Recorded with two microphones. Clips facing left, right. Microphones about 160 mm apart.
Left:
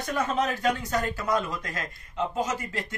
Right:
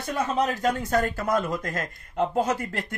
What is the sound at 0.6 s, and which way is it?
Speech, 55° right (ahead or behind).